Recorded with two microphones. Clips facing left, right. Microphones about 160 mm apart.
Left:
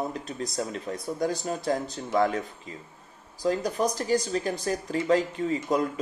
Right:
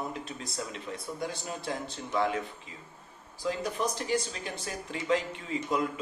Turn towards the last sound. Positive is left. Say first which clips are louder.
# left 5 dB
turn(degrees=40)  # may be behind; listen again after turning